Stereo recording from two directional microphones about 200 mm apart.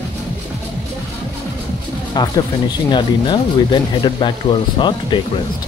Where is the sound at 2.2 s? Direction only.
20° left (ahead or behind).